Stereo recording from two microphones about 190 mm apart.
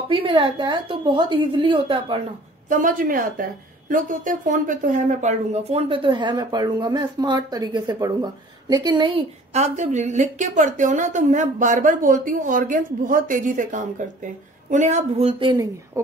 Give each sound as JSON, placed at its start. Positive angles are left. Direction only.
{"t": 0.1, "sound": "a woman's voice", "side_deg": -25}
{"t": 2.7, "sound": "a woman's voice", "side_deg": -45}